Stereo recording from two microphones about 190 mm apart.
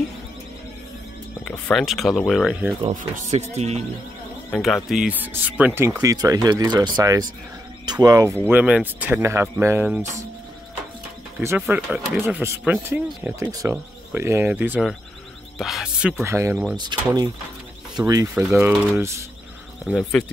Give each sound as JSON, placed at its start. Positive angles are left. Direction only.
{"t": 1.4, "sound": "speech", "side_deg": 5}
{"t": 2.9, "sound": "speech", "side_deg": -45}
{"t": 4.8, "sound": "speech", "side_deg": -5}
{"t": 11.6, "sound": "speech", "side_deg": -10}
{"t": 18.3, "sound": "speech", "side_deg": -5}
{"t": 18.9, "sound": "speech", "side_deg": -15}
{"t": 19.8, "sound": "speech", "side_deg": 0}